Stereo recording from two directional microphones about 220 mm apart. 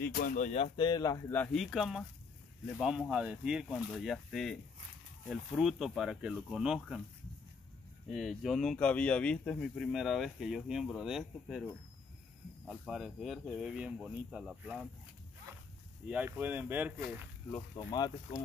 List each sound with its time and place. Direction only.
0.0 s speech: 40° left (ahead or behind); by 7.0 s 5° right (ahead or behind)
8.1 s speech: centre (ahead or behind)
16.1 s speech: 5° right (ahead or behind)
17.5 s speech: 5° left (ahead or behind)
17.9 s speech: 20° left (ahead or behind)